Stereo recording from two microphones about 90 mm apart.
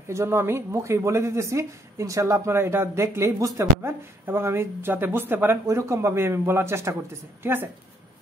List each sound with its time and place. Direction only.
0.1 s a woman's voice: 30° right (ahead or behind)